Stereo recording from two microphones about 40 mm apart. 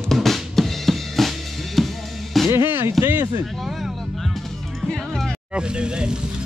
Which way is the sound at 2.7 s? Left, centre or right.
Right.